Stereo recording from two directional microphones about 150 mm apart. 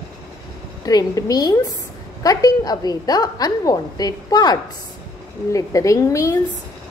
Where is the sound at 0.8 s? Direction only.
25° left (ahead or behind).